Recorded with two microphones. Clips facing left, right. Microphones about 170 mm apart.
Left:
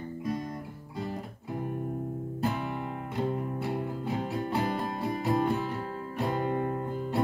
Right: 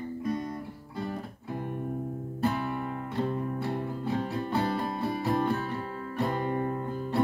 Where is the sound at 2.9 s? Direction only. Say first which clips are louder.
Right 1 dB; 15° left (ahead or behind).